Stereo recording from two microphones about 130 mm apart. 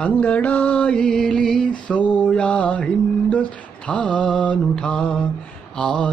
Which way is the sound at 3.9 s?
10° left (ahead or behind).